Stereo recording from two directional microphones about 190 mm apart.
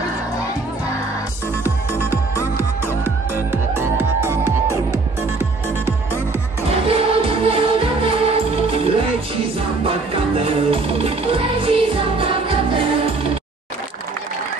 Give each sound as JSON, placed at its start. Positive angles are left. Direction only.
{"t": 1.6, "sound": "music", "side_deg": 15}
{"t": 3.3, "sound": "music", "side_deg": -10}
{"t": 6.9, "sound": "music", "side_deg": -30}